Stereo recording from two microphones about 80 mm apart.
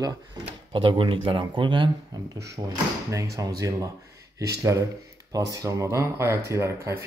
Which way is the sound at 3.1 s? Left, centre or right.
Right.